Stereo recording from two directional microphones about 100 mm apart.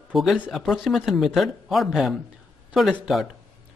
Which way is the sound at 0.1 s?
Centre (ahead or behind).